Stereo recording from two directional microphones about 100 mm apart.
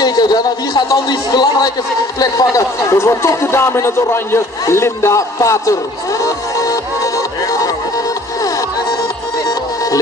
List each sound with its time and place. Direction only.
0.0 s a man's voice: 45° left (ahead or behind)
7.4 s music: 35° left (ahead or behind)